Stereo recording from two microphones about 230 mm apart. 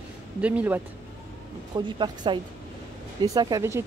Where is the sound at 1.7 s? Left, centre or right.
Centre.